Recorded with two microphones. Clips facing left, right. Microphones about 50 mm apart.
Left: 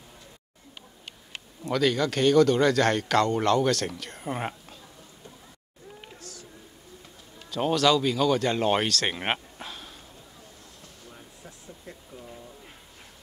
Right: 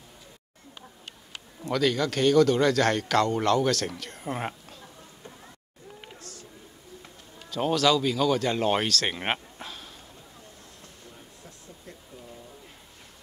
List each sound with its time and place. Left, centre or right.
1.6 s speech: centre
6.1 s a sound: right
7.4 s speech: centre